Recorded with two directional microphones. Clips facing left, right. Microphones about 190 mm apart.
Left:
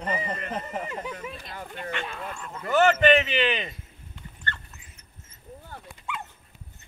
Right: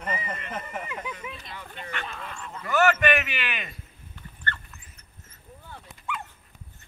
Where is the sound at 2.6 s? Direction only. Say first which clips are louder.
Left 2 dB; 25° left (ahead or behind).